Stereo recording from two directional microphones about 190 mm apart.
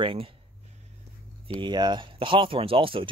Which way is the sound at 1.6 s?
25° right (ahead or behind).